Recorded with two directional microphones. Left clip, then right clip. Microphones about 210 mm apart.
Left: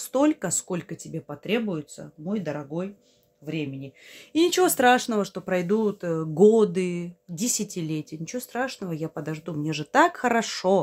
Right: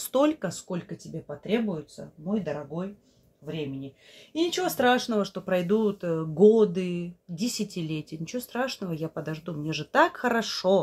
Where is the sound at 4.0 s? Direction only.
45° left (ahead or behind); by 6.2 s 20° left (ahead or behind).